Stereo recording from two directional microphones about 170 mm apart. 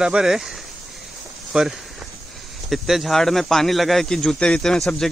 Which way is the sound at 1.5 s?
5° right (ahead or behind).